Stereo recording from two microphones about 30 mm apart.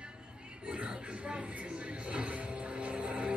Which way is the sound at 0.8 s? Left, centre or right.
Right.